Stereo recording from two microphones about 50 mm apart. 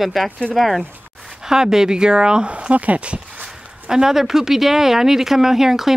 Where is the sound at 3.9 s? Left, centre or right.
Centre.